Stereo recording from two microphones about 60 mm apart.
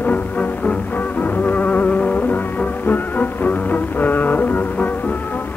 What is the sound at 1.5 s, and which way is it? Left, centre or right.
Music, left.